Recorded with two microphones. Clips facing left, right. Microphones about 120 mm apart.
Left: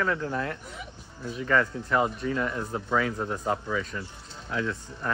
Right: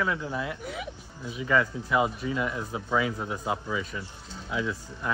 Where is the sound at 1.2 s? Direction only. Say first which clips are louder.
Even; 5° right (ahead or behind).